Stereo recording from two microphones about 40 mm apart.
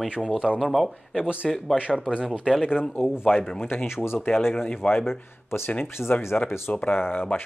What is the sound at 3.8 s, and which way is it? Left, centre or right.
Speech, left.